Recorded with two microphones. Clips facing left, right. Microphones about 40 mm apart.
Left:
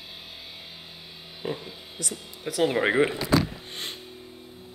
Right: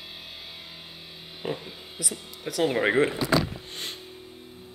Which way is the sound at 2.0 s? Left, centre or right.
Centre.